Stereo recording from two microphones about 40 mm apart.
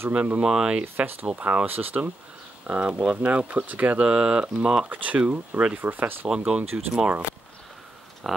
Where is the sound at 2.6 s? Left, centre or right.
Right.